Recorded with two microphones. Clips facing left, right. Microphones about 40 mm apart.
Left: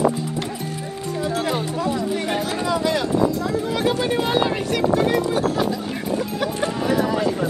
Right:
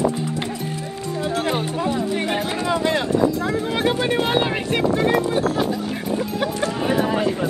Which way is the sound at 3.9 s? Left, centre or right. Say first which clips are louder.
Right 1 dB; right.